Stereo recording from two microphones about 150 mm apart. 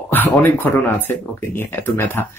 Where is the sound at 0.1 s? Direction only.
15° left (ahead or behind).